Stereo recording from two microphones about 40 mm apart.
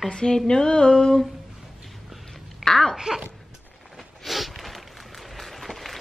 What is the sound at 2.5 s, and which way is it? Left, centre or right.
Babbling, centre.